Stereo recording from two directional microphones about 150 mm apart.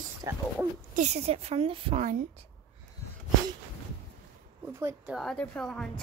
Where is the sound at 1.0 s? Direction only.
45° right (ahead or behind).